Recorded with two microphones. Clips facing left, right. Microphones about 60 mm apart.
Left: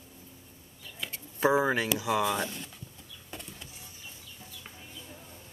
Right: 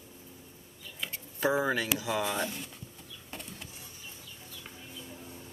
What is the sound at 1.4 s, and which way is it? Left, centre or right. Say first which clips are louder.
Speech: left 3 dB; centre.